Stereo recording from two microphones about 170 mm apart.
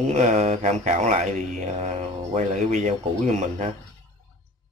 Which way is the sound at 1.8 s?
40° right (ahead or behind).